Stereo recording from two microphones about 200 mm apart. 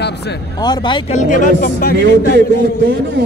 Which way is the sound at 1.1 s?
40° left (ahead or behind).